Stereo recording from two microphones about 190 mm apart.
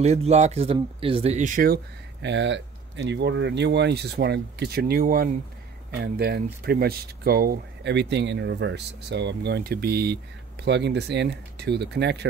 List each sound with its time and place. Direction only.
0.0 s speech: 35° right (ahead or behind)
2.2 s speech: 70° right (ahead or behind)